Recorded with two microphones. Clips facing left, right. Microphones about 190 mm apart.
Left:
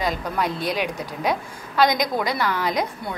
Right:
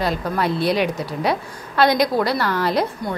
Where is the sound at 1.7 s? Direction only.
10° left (ahead or behind).